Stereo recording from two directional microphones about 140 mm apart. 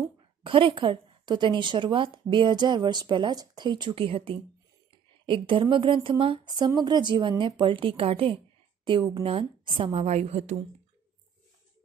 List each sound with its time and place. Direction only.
0.4 s a woman's voice: 40° right (ahead or behind)
9.9 s a woman's voice: 55° right (ahead or behind)